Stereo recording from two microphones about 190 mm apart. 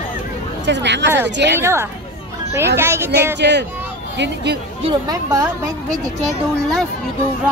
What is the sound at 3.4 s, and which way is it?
A woman's voice, 65° right (ahead or behind).